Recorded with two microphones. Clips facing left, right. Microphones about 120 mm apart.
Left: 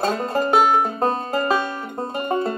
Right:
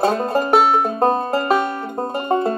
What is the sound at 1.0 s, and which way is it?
Music, 50° right (ahead or behind).